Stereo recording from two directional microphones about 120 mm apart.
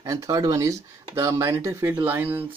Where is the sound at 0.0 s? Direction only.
30° right (ahead or behind).